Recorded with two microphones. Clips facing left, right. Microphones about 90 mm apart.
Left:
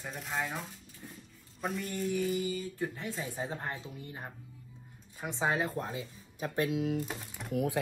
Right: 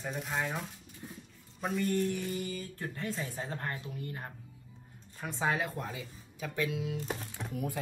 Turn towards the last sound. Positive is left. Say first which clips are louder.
# left 6 dB
turn(degrees=75)  # may be behind; listen again after turning